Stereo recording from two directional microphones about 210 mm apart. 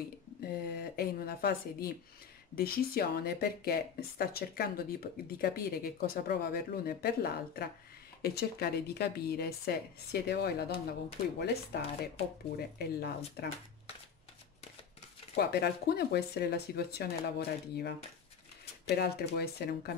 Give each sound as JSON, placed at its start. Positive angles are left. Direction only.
{"t": 0.4, "sound": "speech", "side_deg": 45}
{"t": 15.3, "sound": "speech", "side_deg": 50}